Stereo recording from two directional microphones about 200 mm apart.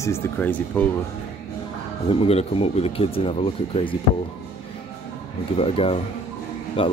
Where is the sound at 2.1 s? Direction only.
30° left (ahead or behind).